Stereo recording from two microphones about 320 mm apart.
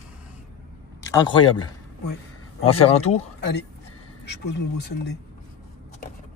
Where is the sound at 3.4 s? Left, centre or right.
Left.